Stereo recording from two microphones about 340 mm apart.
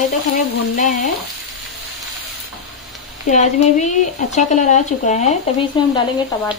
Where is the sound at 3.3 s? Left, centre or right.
Left.